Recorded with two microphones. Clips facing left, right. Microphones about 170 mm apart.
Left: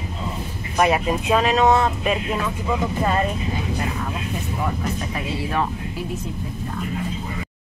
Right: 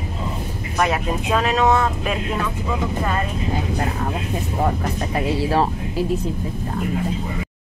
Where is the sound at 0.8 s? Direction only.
15° left (ahead or behind).